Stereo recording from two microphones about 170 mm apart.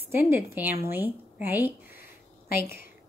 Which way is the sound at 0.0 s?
10° right (ahead or behind).